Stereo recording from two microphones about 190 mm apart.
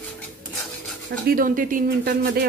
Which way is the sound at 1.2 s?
50° right (ahead or behind).